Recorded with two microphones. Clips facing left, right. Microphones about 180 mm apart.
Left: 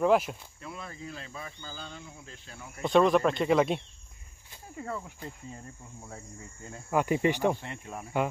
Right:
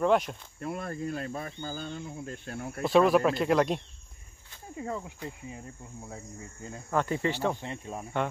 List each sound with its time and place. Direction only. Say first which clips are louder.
0.0 s speech: left 1 dB; 5° left (ahead or behind)
0.6 s speech: right 8 dB; 55° right (ahead or behind)
2.8 s speech: right 1 dB; 5° right (ahead or behind)
4.7 s cricket: right 2 dB; 15° right (ahead or behind)
6.9 s speech: left 3 dB; 10° left (ahead or behind)
7.6 s speech: right 3 dB; 25° right (ahead or behind)